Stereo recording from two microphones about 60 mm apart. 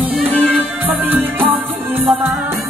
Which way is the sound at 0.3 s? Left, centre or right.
Right.